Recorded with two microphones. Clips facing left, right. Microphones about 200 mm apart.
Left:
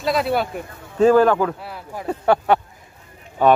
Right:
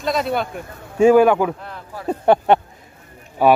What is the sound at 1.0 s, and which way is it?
Speech, 10° right (ahead or behind).